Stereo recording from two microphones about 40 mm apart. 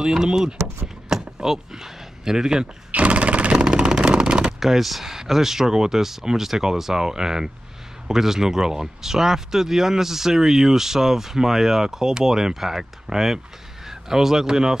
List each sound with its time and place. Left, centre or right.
0.0 s speech: centre
1.0 s a sound: centre
2.9 s jackhammer: right
3.5 s vehicle: centre
4.6 s speech: centre